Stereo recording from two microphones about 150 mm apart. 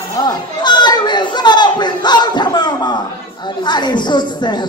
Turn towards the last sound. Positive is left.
turn(degrees=30)  # may be behind; listen again after turning